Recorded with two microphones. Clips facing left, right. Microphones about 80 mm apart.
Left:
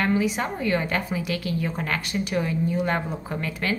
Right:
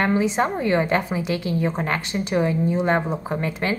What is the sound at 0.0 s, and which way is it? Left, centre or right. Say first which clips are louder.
A woman's voice: right 3 dB; right.